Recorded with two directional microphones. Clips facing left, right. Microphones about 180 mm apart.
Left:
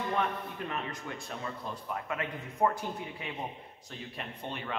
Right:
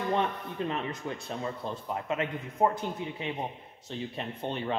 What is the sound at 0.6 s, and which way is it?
A man's voice, 25° right (ahead or behind).